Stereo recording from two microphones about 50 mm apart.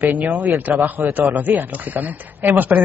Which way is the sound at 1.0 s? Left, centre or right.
Right.